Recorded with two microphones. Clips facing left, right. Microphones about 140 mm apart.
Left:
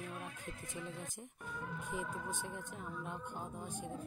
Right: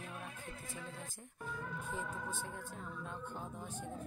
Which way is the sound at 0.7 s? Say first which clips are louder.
Left 5 dB; 20° left (ahead or behind).